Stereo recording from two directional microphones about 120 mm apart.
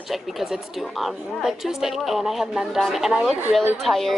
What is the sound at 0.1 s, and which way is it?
A woman's voice, centre (ahead or behind).